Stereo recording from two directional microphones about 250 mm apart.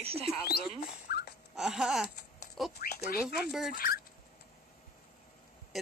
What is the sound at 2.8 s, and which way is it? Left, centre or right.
Speech, left.